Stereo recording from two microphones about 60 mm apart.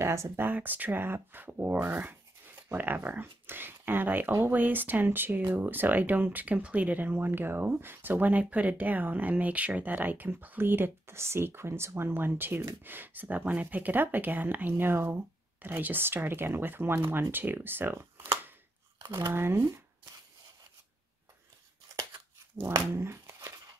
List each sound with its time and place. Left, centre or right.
0.0 s speech: right
0.4 s speech: right
22.6 s speech: right